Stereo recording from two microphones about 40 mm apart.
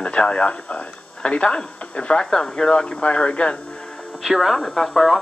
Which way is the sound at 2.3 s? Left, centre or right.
Centre.